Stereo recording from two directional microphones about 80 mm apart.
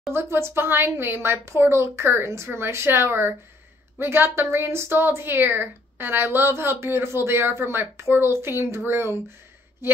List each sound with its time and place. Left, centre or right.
0.1 s a woman's voice: right